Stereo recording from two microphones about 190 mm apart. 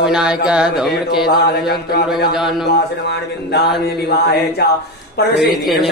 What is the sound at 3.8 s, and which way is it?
Speech, 55° left (ahead or behind).